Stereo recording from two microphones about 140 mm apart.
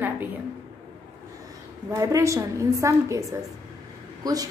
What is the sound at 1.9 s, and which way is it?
A woman's voice, 20° right (ahead or behind).